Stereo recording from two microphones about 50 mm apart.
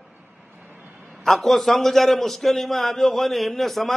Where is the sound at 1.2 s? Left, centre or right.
Centre.